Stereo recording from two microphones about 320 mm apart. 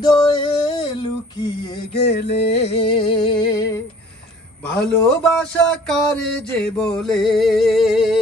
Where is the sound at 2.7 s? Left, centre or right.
Centre.